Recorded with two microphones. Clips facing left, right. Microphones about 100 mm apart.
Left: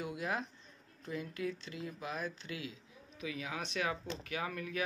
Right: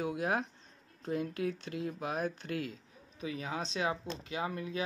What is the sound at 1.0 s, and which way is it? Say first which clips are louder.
Speech: right 5 dB; 50° right (ahead or behind).